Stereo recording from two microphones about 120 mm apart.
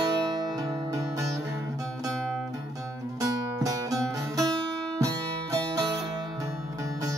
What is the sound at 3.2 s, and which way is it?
Music, 30° right (ahead or behind).